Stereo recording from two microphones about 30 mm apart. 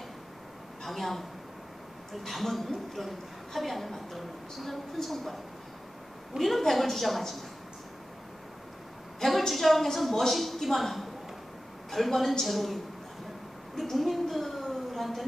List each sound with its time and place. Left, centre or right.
0.8 s a woman's voice: centre
2.2 s a woman's voice: centre
9.5 s a woman's voice: centre
13.7 s a sound: centre